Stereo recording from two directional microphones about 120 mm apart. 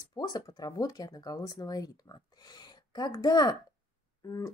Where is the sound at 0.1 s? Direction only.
35° left (ahead or behind).